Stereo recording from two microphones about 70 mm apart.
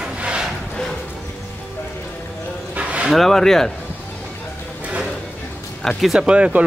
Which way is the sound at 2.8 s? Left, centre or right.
Centre.